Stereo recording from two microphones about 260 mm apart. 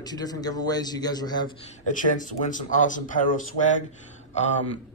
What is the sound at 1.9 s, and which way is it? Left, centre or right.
A man's voice, left.